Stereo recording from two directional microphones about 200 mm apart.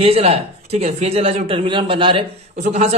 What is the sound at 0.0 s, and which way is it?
Speech, 30° right (ahead or behind).